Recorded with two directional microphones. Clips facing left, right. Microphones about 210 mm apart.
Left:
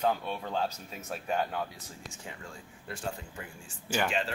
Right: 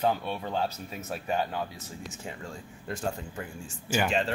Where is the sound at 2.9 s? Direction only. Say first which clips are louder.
Right 5 dB; 45° right (ahead or behind).